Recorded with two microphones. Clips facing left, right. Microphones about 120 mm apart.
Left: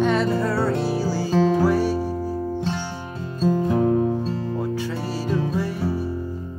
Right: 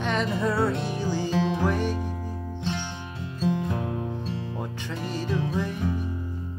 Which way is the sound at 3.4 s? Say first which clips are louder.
Left 7 dB; 40° left (ahead or behind).